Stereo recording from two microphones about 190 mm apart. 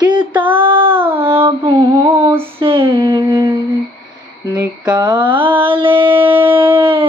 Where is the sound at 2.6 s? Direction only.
30° right (ahead or behind).